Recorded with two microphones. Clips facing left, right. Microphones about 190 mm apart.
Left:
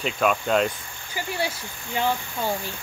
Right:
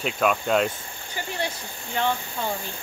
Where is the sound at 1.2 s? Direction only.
10° left (ahead or behind).